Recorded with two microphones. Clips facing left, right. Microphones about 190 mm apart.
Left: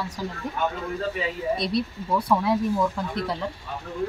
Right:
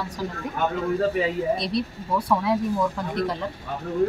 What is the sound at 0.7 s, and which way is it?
Speech, 45° right (ahead or behind).